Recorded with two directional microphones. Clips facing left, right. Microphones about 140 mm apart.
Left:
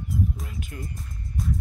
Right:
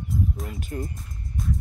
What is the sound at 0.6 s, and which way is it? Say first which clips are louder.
Speech: right 5 dB; 40° right (ahead or behind).